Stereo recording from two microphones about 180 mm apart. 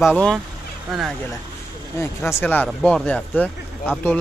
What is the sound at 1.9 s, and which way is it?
Speech, 15° left (ahead or behind).